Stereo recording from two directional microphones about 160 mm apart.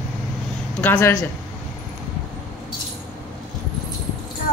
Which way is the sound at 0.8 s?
15° left (ahead or behind).